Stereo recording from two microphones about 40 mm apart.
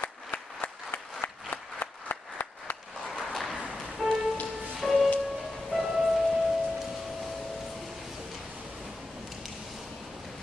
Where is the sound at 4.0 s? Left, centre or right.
Centre.